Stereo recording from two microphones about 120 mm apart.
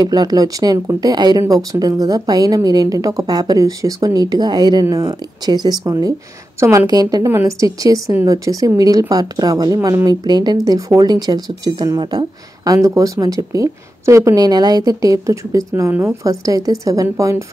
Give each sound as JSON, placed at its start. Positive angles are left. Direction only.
{"t": 0.0, "sound": "a woman's voice", "side_deg": -35}
{"t": 6.6, "sound": "a woman's voice", "side_deg": -20}
{"t": 6.9, "sound": "a woman's voice", "side_deg": -35}
{"t": 12.6, "sound": "a woman's voice", "side_deg": -30}
{"t": 16.3, "sound": "a woman's voice", "side_deg": -30}